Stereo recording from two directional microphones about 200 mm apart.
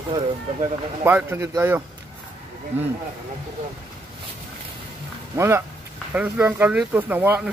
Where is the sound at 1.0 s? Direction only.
10° right (ahead or behind).